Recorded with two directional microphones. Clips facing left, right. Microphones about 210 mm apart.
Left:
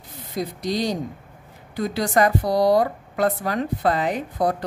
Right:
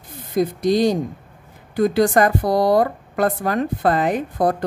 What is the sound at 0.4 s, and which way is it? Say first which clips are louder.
A woman's voice: right 8 dB; 50° right (ahead or behind).